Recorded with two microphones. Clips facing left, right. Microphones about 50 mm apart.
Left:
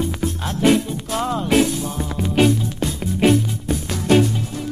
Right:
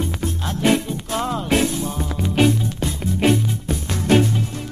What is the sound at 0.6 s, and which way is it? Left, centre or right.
Music, centre.